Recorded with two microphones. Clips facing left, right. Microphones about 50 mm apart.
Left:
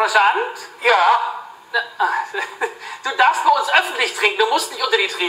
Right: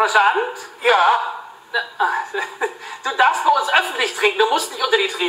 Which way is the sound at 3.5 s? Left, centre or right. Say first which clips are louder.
Even; right.